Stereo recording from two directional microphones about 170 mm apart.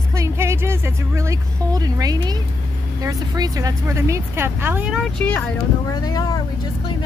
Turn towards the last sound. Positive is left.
turn(degrees=25)  # may be behind; listen again after turning